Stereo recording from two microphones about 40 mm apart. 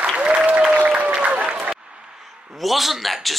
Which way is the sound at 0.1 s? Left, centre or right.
Right.